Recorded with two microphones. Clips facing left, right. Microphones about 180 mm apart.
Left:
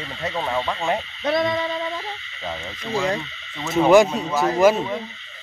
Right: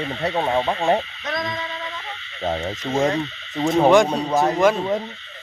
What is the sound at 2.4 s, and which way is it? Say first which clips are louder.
Speech: right 8 dB; 45° right (ahead or behind).